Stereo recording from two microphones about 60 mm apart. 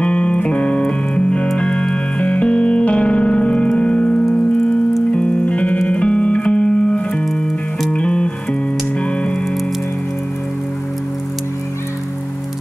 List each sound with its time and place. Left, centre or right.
0.0 s music: left